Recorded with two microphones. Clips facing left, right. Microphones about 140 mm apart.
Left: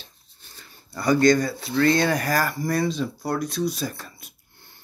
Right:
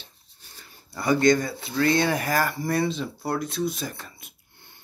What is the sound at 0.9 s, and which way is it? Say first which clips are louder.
Speech: left 2 dB; 20° right (ahead or behind).